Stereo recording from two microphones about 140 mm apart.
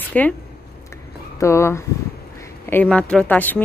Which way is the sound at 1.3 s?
20° left (ahead or behind).